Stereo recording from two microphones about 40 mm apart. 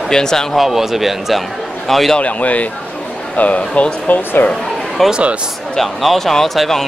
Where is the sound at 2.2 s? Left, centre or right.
Left.